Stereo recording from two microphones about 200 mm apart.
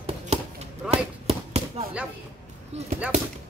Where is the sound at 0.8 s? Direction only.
30° right (ahead or behind).